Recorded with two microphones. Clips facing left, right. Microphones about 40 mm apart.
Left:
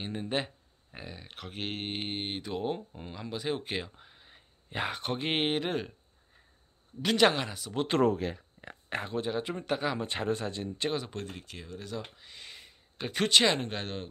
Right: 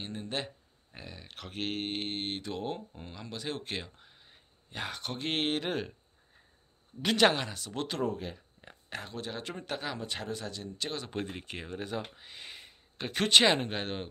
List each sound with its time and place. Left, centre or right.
0.0 s speech: centre
5.6 s speech: centre
7.0 s speech: centre
8.0 s speech: left
9.0 s speech: centre
9.3 s speech: centre
9.9 s speech: left
11.1 s speech: right
12.2 s speech: centre